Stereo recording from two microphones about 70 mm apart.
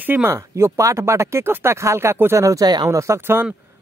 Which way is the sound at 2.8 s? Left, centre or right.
Right.